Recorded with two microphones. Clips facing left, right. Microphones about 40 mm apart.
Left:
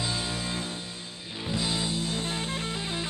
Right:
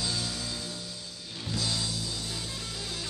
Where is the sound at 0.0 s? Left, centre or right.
Left.